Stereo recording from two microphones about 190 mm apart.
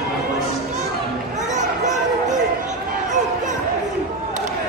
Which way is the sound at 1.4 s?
40° right (ahead or behind).